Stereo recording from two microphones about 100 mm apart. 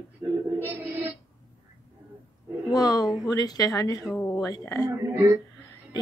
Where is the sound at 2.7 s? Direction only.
40° left (ahead or behind).